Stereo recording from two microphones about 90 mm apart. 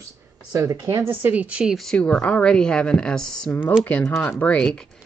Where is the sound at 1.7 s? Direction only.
5° left (ahead or behind).